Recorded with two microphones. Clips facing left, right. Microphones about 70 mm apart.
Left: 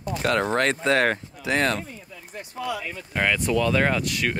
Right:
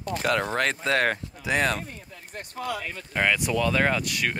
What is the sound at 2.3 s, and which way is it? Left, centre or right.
Speech, right.